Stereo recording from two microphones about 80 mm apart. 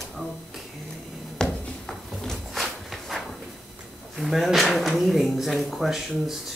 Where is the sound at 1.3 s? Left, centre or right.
Centre.